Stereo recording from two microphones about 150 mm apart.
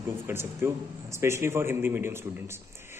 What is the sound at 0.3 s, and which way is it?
A man's voice, 15° right (ahead or behind).